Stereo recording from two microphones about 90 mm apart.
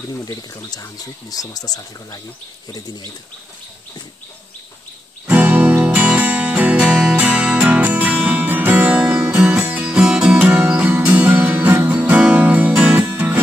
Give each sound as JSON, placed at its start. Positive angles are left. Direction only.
{"t": 0.2, "sound": "speech", "side_deg": 45}
{"t": 5.2, "sound": "music", "side_deg": -20}
{"t": 8.8, "sound": "music", "side_deg": -10}
{"t": 9.8, "sound": "music", "side_deg": -5}
{"t": 10.7, "sound": "music", "side_deg": -20}